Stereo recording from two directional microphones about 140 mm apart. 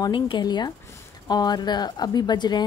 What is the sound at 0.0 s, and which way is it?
Speech, 35° left (ahead or behind).